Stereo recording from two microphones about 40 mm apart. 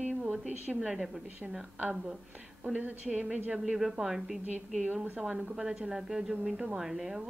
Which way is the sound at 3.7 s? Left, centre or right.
Centre.